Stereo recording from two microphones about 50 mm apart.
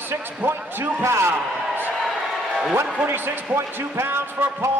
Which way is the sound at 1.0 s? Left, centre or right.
Right.